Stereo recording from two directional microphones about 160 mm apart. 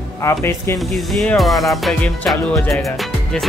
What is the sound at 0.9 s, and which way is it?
Speech, centre (ahead or behind).